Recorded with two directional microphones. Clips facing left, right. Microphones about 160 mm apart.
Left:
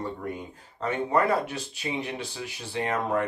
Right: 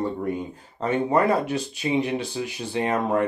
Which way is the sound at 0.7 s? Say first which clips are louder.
Right 4 dB; 20° right (ahead or behind).